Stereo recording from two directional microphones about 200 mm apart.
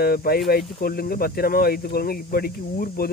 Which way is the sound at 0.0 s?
50° left (ahead or behind).